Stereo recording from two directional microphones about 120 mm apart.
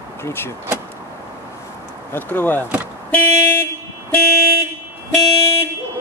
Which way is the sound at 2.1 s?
15° left (ahead or behind).